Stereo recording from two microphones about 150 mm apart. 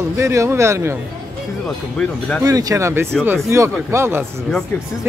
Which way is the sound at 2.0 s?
5° left (ahead or behind).